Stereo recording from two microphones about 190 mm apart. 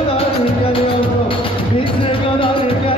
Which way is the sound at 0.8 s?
25° left (ahead or behind).